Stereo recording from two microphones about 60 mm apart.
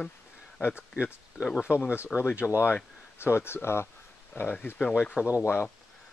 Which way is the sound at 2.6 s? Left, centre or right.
Left.